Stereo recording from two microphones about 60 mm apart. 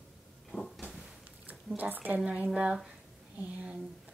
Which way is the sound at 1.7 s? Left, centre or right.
Right.